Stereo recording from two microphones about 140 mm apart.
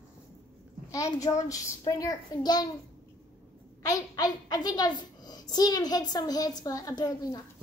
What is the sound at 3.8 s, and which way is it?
A woman's voice, 25° left (ahead or behind).